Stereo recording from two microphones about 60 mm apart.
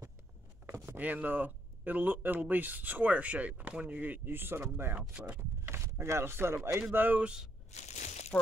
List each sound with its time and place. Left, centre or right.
0.7 s a sound: right
0.9 s speech: right
6.9 s speech: right